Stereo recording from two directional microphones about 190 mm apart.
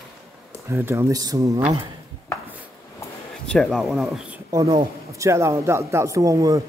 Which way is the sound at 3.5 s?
5° left (ahead or behind).